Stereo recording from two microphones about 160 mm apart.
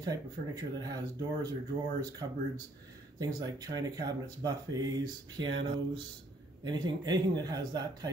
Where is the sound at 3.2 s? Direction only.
25° right (ahead or behind).